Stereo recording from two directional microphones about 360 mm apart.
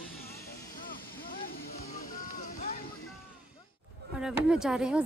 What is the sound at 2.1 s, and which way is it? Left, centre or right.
Vehicle, left.